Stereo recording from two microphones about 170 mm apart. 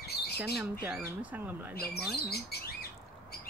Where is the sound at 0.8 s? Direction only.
10° right (ahead or behind).